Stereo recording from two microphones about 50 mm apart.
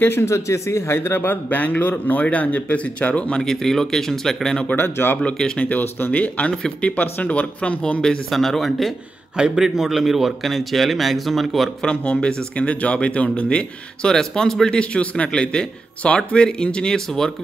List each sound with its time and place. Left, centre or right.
0.0 s speech: left
0.3 s speech: left
0.9 s speech: left
1.6 s speech: left
3.3 s speech: centre
4.7 s speech: left
6.1 s speech: left
8.3 s a man's voice: centre
11.8 s speech: centre
14.8 s speech: left